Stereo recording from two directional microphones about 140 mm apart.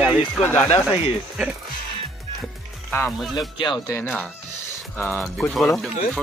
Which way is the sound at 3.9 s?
15° left (ahead or behind).